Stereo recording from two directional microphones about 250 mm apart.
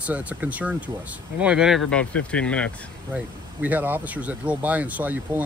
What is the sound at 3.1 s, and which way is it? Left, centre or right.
Speech, centre.